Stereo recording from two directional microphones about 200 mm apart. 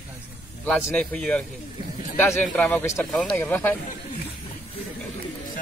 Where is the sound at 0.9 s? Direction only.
5° left (ahead or behind).